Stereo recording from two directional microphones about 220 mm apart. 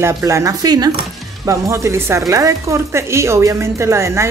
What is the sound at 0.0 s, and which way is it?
Speech, 15° right (ahead or behind).